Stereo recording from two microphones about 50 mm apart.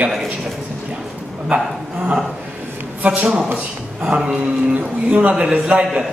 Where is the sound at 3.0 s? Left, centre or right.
Right.